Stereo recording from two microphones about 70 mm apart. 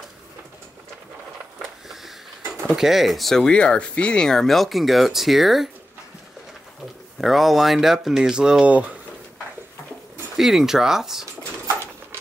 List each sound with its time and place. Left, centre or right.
1.6 s a sound: centre
2.7 s speech: centre
7.2 s speech: centre
10.3 s speech: centre